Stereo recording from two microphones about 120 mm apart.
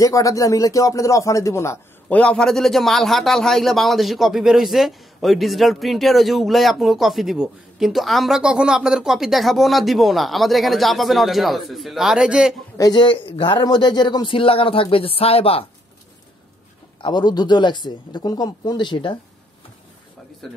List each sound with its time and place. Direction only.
0.0 s speech: 25° left (ahead or behind)
2.0 s a man's voice: 10° left (ahead or behind); by 12.5 s 5° right (ahead or behind)
12.7 s a man's voice: 35° left (ahead or behind); by 15.6 s 55° left (ahead or behind)
17.0 s speech: 35° left (ahead or behind)
20.4 s a man's voice: centre (ahead or behind)